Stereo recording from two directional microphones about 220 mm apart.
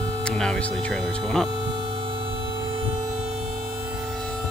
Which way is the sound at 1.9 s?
25° right (ahead or behind).